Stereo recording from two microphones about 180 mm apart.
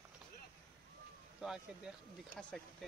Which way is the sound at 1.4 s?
5° right (ahead or behind).